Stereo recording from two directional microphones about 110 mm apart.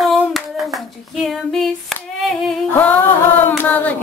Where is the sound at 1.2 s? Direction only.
5° left (ahead or behind).